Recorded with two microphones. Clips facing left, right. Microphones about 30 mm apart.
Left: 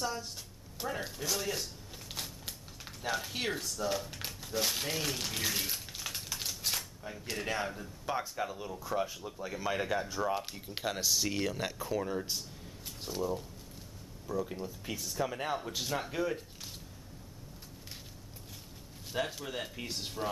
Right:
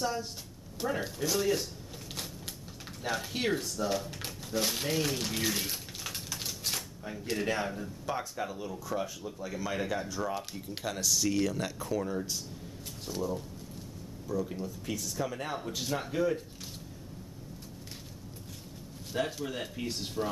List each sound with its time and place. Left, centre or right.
0.0 s speech: centre
3.0 s speech: centre
19.1 s speech: centre